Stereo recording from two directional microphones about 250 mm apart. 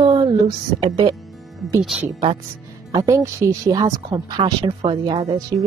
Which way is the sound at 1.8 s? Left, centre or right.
Centre.